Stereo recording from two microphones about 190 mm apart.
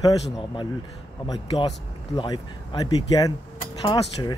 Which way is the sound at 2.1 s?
20° left (ahead or behind).